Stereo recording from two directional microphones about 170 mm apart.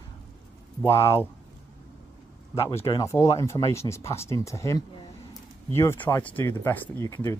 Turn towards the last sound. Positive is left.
turn(degrees=20)  # may be behind; listen again after turning